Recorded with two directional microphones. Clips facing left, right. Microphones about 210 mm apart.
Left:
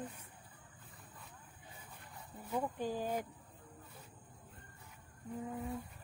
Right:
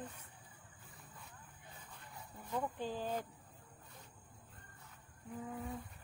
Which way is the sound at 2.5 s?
10° left (ahead or behind).